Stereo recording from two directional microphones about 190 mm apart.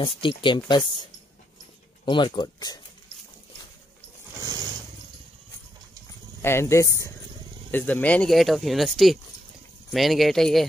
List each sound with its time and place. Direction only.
0.0 s speech: 25° left (ahead or behind)
2.0 s speech: 25° left (ahead or behind)
6.4 s speech: 15° left (ahead or behind)